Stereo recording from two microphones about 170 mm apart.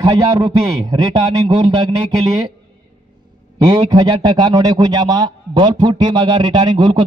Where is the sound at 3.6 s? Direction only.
25° right (ahead or behind).